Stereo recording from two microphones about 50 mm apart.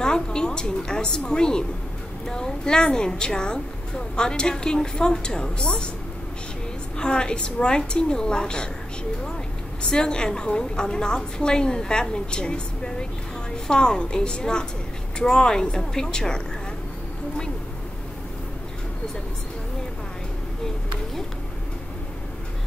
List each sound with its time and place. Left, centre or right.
0.0 s a woman's voice: centre
7.0 s a woman's voice: centre
9.8 s a woman's voice: centre